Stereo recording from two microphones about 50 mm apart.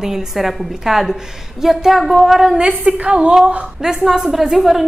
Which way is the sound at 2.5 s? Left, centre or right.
Centre.